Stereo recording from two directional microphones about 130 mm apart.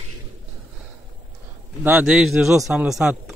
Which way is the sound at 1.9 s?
10° right (ahead or behind).